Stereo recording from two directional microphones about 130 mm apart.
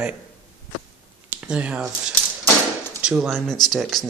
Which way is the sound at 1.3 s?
10° right (ahead or behind).